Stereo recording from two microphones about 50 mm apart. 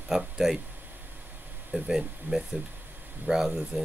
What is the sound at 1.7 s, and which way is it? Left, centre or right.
Speech, centre.